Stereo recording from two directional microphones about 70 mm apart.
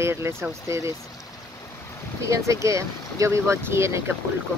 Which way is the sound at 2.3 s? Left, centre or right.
Right.